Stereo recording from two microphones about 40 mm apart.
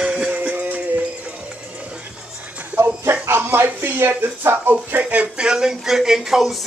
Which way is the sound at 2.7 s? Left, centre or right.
Right.